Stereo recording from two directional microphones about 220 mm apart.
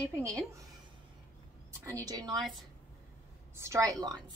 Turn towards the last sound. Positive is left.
turn(degrees=-15)  # may be behind; listen again after turning